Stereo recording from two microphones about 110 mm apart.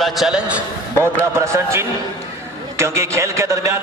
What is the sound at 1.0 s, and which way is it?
A man's voice, 25° right (ahead or behind).